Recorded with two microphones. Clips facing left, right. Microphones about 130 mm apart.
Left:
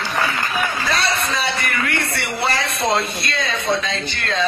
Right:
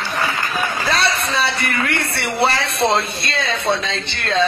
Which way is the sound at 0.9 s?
30° right (ahead or behind).